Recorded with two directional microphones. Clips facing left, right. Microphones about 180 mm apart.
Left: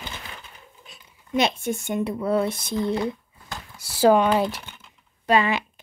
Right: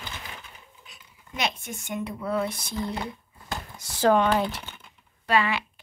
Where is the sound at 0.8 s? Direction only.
30° left (ahead or behind).